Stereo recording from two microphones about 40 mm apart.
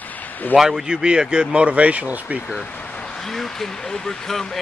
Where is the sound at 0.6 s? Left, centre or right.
Centre.